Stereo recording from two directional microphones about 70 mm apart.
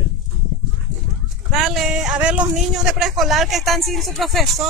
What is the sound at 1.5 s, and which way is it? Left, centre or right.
Speech, centre.